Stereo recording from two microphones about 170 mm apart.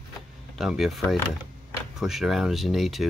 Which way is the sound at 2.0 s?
Centre (ahead or behind).